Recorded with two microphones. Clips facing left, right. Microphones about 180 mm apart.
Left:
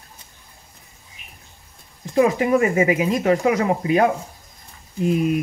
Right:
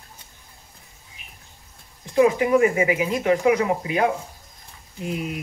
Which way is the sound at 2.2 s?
45° left (ahead or behind).